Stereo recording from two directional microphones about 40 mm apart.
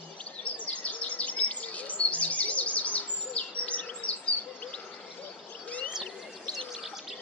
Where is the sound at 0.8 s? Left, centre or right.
Left.